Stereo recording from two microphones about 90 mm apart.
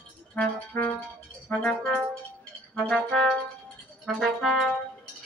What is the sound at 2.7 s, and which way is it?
Music, 5° left (ahead or behind).